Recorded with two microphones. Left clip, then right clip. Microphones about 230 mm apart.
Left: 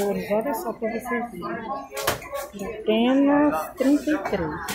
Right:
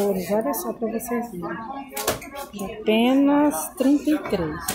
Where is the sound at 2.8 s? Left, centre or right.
Right.